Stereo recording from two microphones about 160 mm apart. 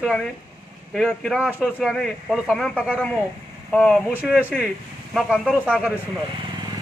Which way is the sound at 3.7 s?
5° left (ahead or behind).